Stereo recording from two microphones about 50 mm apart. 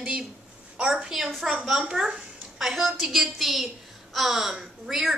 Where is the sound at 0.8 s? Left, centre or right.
Centre.